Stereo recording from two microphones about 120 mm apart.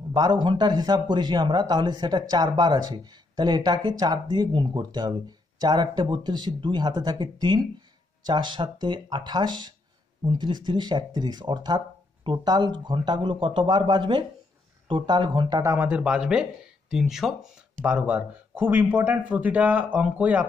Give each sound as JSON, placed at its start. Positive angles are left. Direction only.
{"t": 0.1, "sound": "speech", "side_deg": -40}
{"t": 15.6, "sound": "speech", "side_deg": -20}